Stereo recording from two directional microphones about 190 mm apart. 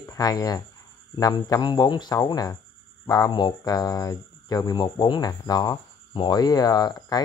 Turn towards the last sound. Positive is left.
turn(degrees=20)  # may be behind; listen again after turning